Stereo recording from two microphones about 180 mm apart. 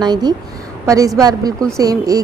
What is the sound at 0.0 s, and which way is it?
A woman's voice, 20° right (ahead or behind).